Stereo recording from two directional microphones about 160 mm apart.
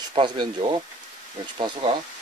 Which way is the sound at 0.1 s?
30° right (ahead or behind).